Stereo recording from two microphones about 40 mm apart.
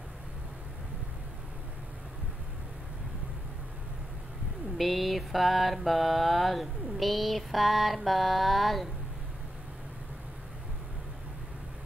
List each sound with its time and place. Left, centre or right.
4.7 s mantra: centre